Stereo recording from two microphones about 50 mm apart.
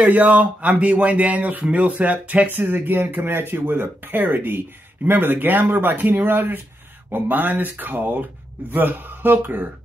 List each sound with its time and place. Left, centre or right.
0.0 s speech: right